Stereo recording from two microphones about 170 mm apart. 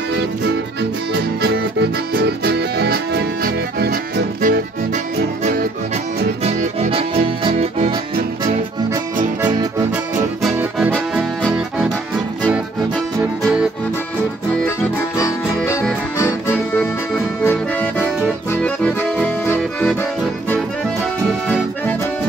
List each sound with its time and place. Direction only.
1.4 s accordion: 75° right (ahead or behind); by 5.7 s 50° right (ahead or behind)
6.4 s accordion: 35° right (ahead or behind)
7.4 s music: 35° right (ahead or behind)
9.5 s accordion: 20° right (ahead or behind)
12.4 s music: 5° right (ahead or behind)
14.6 s music: 15° left (ahead or behind)
16.2 s accordion: 15° left (ahead or behind)